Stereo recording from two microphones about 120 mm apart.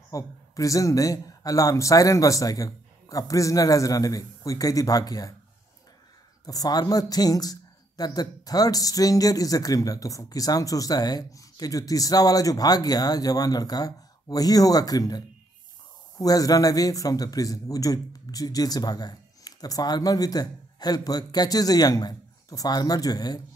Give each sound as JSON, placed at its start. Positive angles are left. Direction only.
{"t": 0.1, "sound": "speech", "side_deg": 30}
{"t": 6.4, "sound": "speech", "side_deg": 30}